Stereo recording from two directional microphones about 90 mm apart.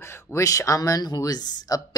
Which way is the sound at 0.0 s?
30° left (ahead or behind).